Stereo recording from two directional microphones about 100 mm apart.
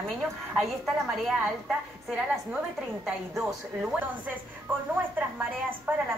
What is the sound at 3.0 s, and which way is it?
Speech, 10° right (ahead or behind).